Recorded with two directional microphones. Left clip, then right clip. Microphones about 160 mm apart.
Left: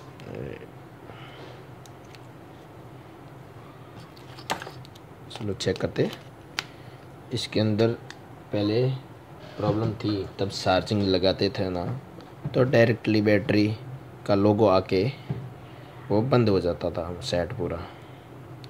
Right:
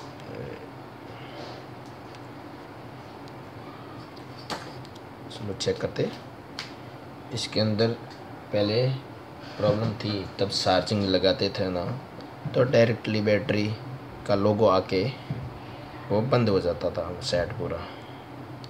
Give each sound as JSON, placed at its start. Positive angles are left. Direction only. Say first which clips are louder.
{"t": 5.6, "sound": "speech", "louder": "left 1 dB", "side_deg": 60}
{"t": 7.3, "sound": "speech", "louder": "left 1 dB", "side_deg": 55}